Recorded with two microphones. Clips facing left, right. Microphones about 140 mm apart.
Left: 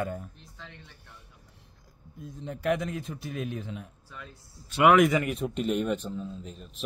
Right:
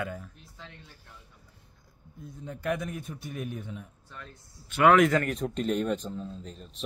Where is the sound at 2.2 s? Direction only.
70° left (ahead or behind).